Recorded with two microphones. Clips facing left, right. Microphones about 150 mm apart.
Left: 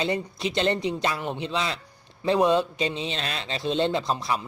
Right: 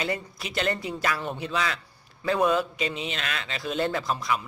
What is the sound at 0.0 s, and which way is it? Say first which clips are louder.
Speech: left 4 dB; 25° left (ahead or behind).